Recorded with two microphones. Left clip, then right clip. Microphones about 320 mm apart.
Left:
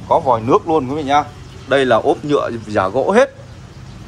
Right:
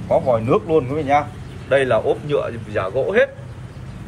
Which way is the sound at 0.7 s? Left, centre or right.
Centre.